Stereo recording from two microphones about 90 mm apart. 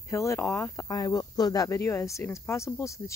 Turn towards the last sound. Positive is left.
turn(degrees=35)  # may be behind; listen again after turning